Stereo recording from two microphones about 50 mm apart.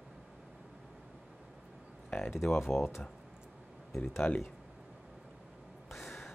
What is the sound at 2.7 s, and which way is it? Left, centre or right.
Speech, left.